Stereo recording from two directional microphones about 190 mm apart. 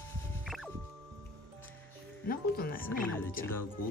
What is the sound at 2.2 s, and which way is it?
Speech, 50° left (ahead or behind).